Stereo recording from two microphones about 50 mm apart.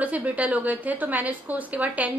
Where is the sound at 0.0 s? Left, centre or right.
Right.